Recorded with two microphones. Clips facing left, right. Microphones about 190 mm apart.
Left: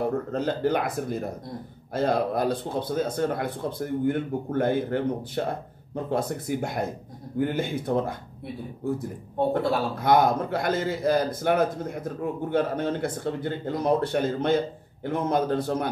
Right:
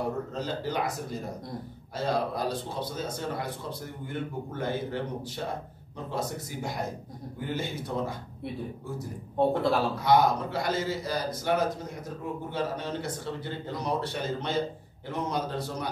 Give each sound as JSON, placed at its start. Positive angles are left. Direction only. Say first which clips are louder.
{"t": 0.3, "sound": "speech", "louder": "left 7 dB", "side_deg": 55}
{"t": 9.6, "sound": "speech", "louder": "left 1 dB", "side_deg": 0}
{"t": 9.9, "sound": "a man's voice", "louder": "left 5 dB", "side_deg": 55}